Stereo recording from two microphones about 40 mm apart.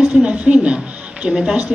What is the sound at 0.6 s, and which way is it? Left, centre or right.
Music, right.